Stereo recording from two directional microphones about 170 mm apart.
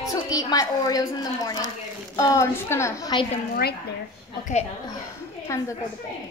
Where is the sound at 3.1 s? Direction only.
25° left (ahead or behind).